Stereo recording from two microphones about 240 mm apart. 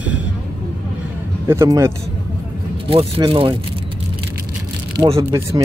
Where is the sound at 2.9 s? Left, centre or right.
Right.